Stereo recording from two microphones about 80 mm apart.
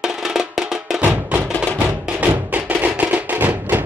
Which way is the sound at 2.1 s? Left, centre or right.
Centre.